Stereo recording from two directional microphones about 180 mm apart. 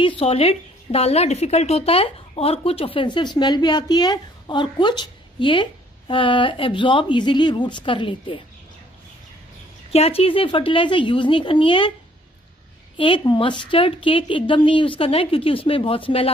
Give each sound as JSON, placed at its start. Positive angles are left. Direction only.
{"t": 0.0, "sound": "a woman's voice", "side_deg": 30}
{"t": 9.9, "sound": "a woman's voice", "side_deg": 35}
{"t": 12.9, "sound": "a woman's voice", "side_deg": 30}